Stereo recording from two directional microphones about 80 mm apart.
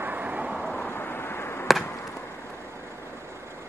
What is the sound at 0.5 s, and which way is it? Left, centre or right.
Vehicle, centre.